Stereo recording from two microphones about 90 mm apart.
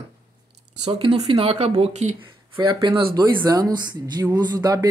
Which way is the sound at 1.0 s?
90° right.